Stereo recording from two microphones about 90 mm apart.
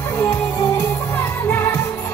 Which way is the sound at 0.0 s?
35° left (ahead or behind).